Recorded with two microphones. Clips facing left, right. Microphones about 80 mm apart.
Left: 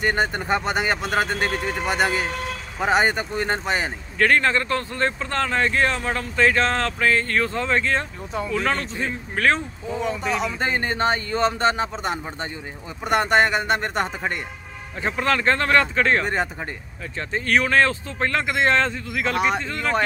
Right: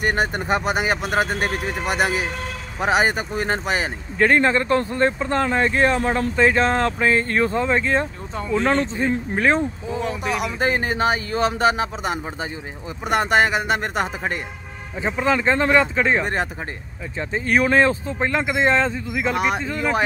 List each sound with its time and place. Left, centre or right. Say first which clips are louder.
0.0 s speech: right 1 dB; centre
4.2 s speech: right 2 dB; right